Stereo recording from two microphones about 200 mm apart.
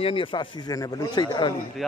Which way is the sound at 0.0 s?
25° left (ahead or behind).